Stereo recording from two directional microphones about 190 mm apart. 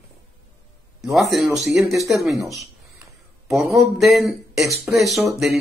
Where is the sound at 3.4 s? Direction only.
5° right (ahead or behind).